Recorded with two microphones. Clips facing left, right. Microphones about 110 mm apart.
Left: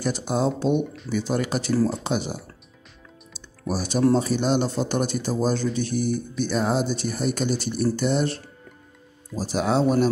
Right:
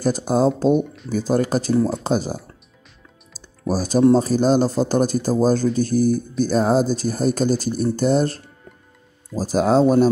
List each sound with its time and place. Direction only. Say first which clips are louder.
0.0 s speech: right 6 dB; 40° right (ahead or behind)
0.7 s speech: right 4 dB; centre (ahead or behind)
1.1 s speech: right 5 dB; 40° right (ahead or behind)
3.3 s music: right 5 dB; 40° right (ahead or behind)
4.1 s speech: right 5 dB; 40° right (ahead or behind)
9.4 s speech: right 6 dB; 40° right (ahead or behind)